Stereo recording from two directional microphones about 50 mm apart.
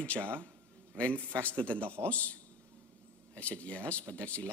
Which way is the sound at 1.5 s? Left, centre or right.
Left.